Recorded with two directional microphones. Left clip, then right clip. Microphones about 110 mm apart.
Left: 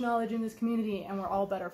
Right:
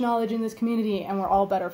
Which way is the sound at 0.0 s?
20° right (ahead or behind).